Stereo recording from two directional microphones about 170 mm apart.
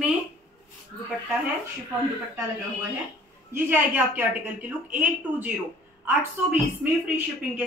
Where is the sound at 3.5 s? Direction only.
10° right (ahead or behind).